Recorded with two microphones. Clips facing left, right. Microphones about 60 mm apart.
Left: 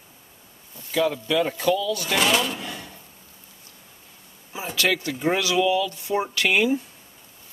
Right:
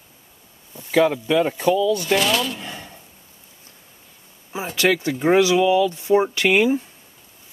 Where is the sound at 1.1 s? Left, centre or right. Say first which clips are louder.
Right 4 dB; right.